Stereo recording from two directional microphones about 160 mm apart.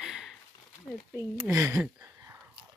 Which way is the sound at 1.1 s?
20° right (ahead or behind).